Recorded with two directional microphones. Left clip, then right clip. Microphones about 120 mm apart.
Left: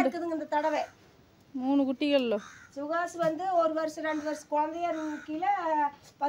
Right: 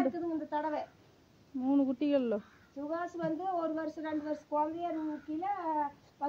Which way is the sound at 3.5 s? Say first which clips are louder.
Left 8 dB; 30° left (ahead or behind).